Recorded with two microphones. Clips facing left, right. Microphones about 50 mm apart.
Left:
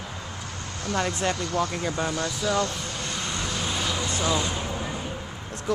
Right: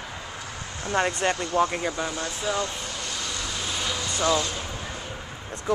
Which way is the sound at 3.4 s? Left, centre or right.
Centre.